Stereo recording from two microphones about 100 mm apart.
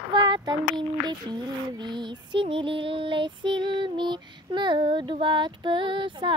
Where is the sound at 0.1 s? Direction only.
45° right (ahead or behind).